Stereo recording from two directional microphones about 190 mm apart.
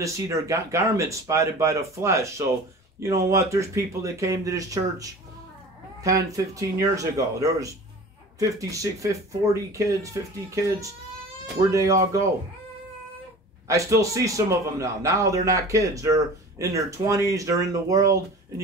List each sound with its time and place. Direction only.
0.0 s a man's voice: 15° right (ahead or behind)
13.7 s a man's voice: 15° right (ahead or behind)